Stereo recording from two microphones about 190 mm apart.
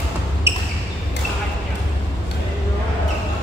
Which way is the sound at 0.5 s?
15° right (ahead or behind).